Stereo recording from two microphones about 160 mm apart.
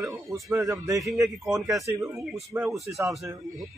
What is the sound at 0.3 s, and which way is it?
Speech, 20° right (ahead or behind).